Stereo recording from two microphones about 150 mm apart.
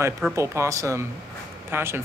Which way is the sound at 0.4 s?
20° right (ahead or behind).